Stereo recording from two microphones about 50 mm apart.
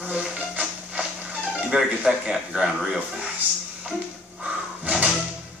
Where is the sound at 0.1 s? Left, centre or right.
Right.